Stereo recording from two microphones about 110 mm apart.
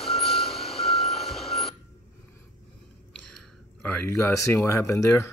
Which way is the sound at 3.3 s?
10° left (ahead or behind).